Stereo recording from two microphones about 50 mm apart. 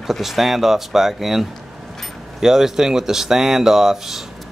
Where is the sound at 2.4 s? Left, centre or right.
Centre.